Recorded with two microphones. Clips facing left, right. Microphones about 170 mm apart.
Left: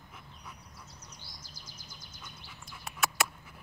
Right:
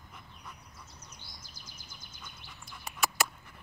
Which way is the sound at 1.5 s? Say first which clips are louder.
Left 1 dB; 55° right (ahead or behind).